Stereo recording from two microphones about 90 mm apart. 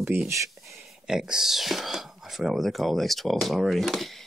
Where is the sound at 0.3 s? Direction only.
35° right (ahead or behind).